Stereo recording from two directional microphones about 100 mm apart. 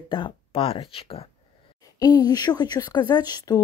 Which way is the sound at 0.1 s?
60° left (ahead or behind).